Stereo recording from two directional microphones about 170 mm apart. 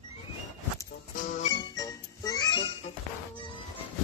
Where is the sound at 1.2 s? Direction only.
50° left (ahead or behind).